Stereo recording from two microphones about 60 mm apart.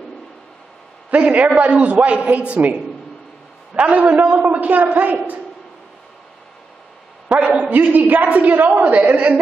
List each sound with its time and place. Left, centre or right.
1.1 s a man's voice: right
7.2 s a man's voice: centre